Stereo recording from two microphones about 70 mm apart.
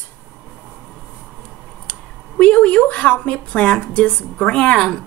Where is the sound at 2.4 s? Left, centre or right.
Centre.